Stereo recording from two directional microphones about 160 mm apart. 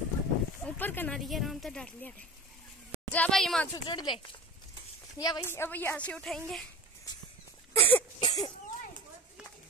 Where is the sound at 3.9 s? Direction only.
30° left (ahead or behind).